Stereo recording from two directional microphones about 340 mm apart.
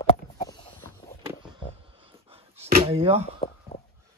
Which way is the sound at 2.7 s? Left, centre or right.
Centre.